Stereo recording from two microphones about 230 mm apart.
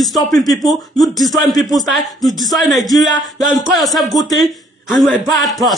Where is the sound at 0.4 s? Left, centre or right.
Centre.